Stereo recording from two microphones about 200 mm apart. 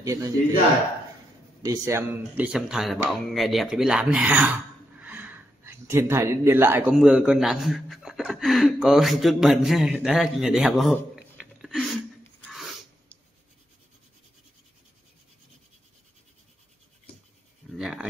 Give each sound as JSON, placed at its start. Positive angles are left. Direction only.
{"t": 0.0, "sound": "a man's voice", "side_deg": -15}
{"t": 1.6, "sound": "speech", "side_deg": -15}
{"t": 17.7, "sound": "a sound", "side_deg": 0}